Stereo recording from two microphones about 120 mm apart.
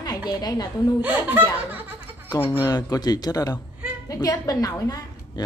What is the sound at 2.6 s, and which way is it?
A woman's voice, 35° left (ahead or behind).